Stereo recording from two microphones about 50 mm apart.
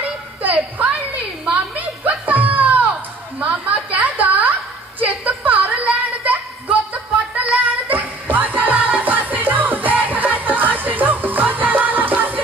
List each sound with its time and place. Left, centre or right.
0.6 s a woman's voice: right
1.4 s a sound: right
7.9 s music: right